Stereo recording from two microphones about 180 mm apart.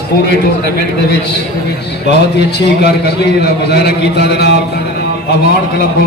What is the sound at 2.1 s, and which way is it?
A man's voice, 65° left (ahead or behind).